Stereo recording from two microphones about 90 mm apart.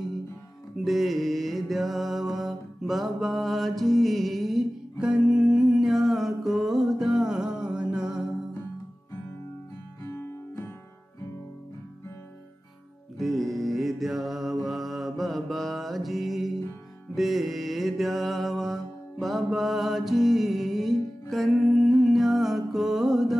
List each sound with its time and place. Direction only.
0.8 s music: centre (ahead or behind)
10.0 s music: 30° left (ahead or behind)
13.2 s mantra: centre (ahead or behind)
17.1 s music: centre (ahead or behind)